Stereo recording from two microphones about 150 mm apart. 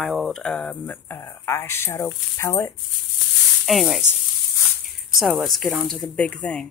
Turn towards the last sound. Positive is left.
turn(degrees=10)  # may be behind; listen again after turning